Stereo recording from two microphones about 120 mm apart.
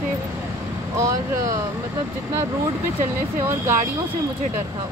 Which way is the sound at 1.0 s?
25° right (ahead or behind).